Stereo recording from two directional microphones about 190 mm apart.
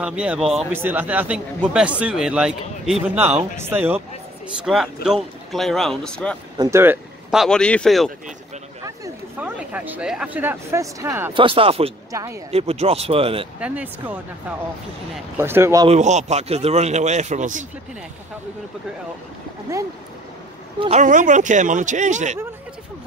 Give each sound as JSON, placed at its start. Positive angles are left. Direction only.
{"t": 0.0, "sound": "speech", "side_deg": -5}
{"t": 4.7, "sound": "speech", "side_deg": 0}
{"t": 6.6, "sound": "speech", "side_deg": -15}
{"t": 8.8, "sound": "speech", "side_deg": -10}
{"t": 11.3, "sound": "speech", "side_deg": -30}
{"t": 12.1, "sound": "speech", "side_deg": -15}
{"t": 12.4, "sound": "speech", "side_deg": -30}
{"t": 13.6, "sound": "speech", "side_deg": -5}
{"t": 15.3, "sound": "speech", "side_deg": -10}
{"t": 15.9, "sound": "speech", "side_deg": -35}
{"t": 20.8, "sound": "speech", "side_deg": -40}